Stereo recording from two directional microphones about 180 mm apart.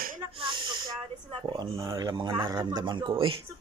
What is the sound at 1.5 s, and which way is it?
Speech, 20° right (ahead or behind).